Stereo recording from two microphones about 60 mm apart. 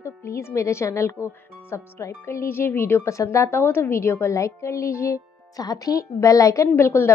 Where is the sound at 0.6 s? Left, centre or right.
Left.